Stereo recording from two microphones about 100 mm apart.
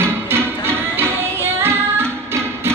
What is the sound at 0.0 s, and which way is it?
Music, 25° right (ahead or behind).